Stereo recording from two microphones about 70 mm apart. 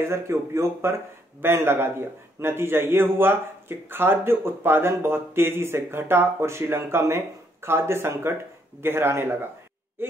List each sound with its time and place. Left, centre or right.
0.1 s a man's voice: right